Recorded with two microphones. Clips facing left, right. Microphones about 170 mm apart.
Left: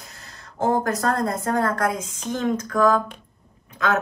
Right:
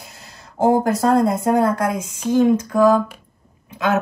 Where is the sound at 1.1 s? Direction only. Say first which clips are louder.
Right 10 dB; 15° right (ahead or behind).